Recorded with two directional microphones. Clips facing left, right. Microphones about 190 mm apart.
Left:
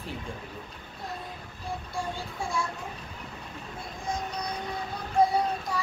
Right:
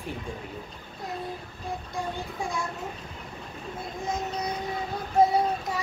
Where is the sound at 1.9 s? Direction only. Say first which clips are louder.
Right 2 dB; 15° right (ahead or behind).